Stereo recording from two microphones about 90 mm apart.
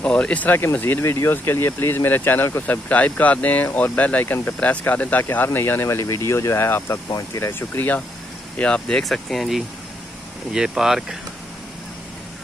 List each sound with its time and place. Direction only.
0.0 s speech: 15° left (ahead or behind); by 7.0 s 30° left (ahead or behind)
7.1 s speech: 40° left (ahead or behind)
7.5 s speech: 20° left (ahead or behind)
8.5 s speech: 10° left (ahead or behind); by 11.1 s 5° right (ahead or behind)